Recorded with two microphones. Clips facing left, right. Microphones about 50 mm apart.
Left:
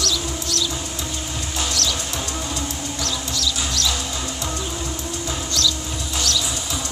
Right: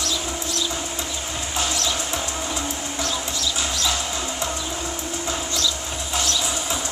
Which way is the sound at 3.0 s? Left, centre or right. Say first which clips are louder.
Left 2 dB; right.